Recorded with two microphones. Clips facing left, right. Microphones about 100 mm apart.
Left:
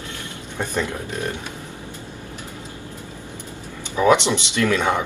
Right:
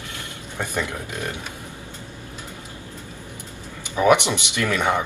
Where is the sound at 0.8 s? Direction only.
15° right (ahead or behind).